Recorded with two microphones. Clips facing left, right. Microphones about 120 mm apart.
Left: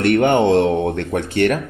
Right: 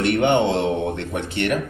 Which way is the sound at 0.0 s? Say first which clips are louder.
Left 4 dB; 45° left (ahead or behind).